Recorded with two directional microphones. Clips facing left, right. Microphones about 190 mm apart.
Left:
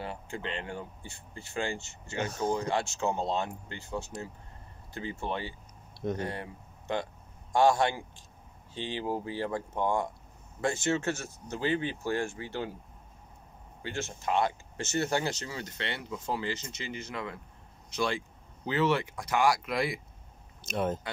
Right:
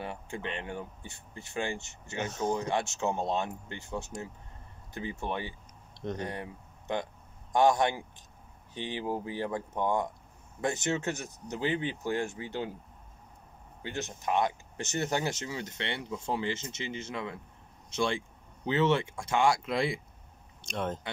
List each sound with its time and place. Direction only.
0.0 s speech: 20° right (ahead or behind)
13.8 s speech: 20° right (ahead or behind)
20.6 s speech: 5° left (ahead or behind)